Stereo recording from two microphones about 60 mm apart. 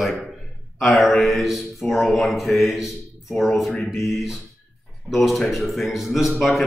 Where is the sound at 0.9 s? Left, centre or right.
Centre.